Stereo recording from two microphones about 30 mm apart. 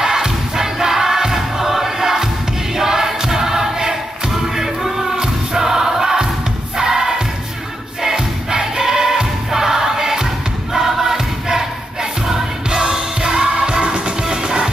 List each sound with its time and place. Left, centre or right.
0.0 s music: centre
2.7 s choir: centre
4.6 s music: centre
5.1 s music: right
5.6 s choir: centre
6.8 s music: centre